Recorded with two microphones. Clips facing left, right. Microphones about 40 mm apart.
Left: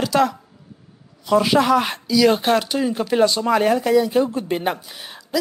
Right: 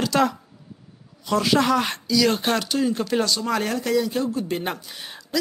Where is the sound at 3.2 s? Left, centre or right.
Left.